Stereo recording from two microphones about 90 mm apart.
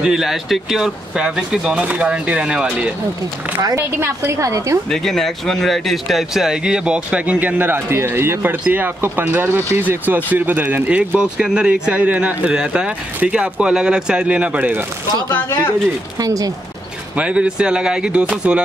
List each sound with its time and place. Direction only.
0.0 s speech: 5° right (ahead or behind)
4.0 s a woman's voice: 35° right (ahead or behind)
4.8 s speech: 5° left (ahead or behind); by 14.9 s 20° right (ahead or behind)
15.2 s speech: 25° left (ahead or behind)
16.2 s a woman's voice: 40° right (ahead or behind)
17.1 s speech: 10° right (ahead or behind)